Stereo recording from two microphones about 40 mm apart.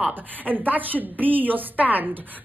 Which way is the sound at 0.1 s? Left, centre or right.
Right.